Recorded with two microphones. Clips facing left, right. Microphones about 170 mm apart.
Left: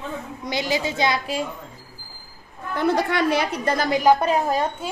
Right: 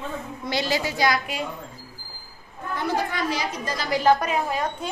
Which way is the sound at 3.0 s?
75° left (ahead or behind).